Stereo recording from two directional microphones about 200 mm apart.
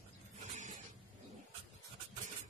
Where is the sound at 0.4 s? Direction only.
35° right (ahead or behind).